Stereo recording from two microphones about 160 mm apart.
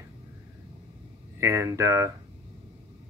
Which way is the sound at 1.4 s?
15° right (ahead or behind).